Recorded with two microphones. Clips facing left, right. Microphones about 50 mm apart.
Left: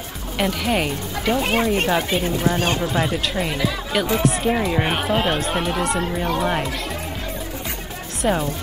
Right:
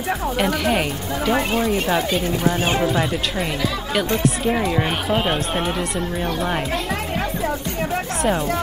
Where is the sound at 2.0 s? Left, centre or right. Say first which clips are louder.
Right 1 dB; centre.